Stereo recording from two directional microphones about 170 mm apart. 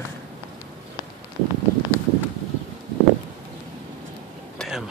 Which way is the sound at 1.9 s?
10° right (ahead or behind).